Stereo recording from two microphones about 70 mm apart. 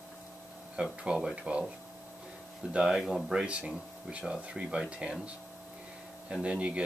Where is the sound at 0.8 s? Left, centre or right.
Centre.